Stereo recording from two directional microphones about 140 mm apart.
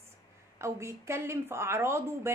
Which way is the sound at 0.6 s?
20° right (ahead or behind).